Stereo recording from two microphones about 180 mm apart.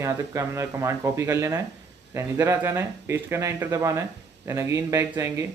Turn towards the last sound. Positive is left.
turn(degrees=-15)  # may be behind; listen again after turning